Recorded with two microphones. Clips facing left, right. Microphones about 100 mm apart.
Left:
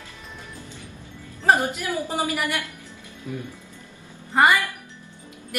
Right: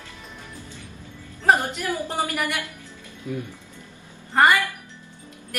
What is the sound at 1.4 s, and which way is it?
Female singing, 5° left (ahead or behind).